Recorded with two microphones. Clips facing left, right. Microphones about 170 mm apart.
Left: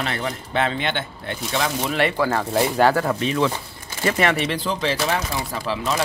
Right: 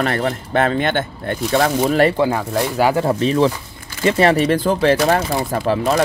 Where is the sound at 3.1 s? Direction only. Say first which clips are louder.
Right 5 dB; 35° right (ahead or behind).